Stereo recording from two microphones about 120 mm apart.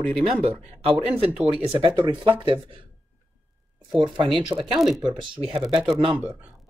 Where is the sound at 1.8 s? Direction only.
40° right (ahead or behind).